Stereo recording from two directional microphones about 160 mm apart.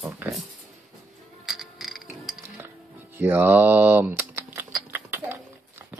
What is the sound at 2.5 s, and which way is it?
Music, 15° right (ahead or behind).